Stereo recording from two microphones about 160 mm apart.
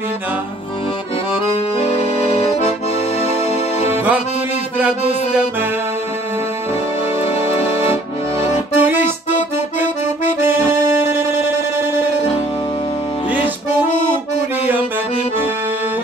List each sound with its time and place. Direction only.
3.2 s music: 40° left (ahead or behind)
4.7 s music: 10° right (ahead or behind)
8.7 s music: 10° right (ahead or behind)
10.4 s music: 15° right (ahead or behind)